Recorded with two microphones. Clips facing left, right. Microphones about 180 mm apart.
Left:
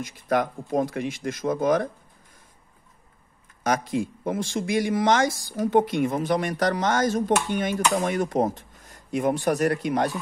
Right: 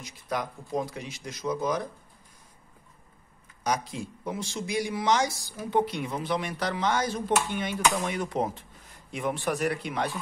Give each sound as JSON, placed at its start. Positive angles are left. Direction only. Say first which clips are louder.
{"t": 0.0, "sound": "speech", "louder": "left 8 dB", "side_deg": 50}
{"t": 3.6, "sound": "speech", "louder": "left 6 dB", "side_deg": 50}